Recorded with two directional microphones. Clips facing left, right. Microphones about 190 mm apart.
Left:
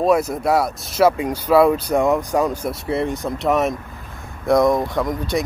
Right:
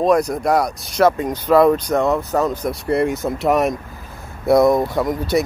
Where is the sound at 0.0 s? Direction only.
5° left (ahead or behind).